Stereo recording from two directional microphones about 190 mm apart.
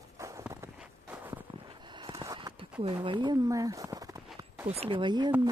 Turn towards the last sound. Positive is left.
turn(degrees=-25)  # may be behind; listen again after turning